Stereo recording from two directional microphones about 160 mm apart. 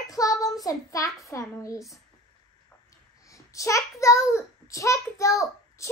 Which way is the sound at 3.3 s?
20° left (ahead or behind).